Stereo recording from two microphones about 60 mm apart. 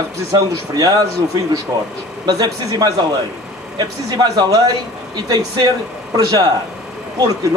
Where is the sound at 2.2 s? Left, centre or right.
Right.